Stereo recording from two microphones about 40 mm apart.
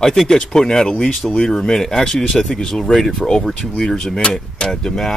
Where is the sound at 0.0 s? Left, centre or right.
Centre.